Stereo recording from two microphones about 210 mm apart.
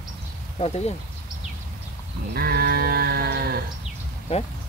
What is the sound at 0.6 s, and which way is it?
Speech, 30° left (ahead or behind).